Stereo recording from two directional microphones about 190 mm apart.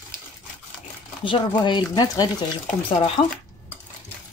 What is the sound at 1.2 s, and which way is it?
Speech, 25° left (ahead or behind).